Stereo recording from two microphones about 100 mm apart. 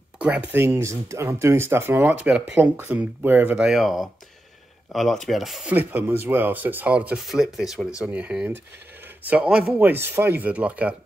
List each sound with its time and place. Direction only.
0.2 s speech: 15° right (ahead or behind)
3.6 s speech: 5° right (ahead or behind)
5.7 s speech: 15° right (ahead or behind)
7.2 s speech: centre (ahead or behind)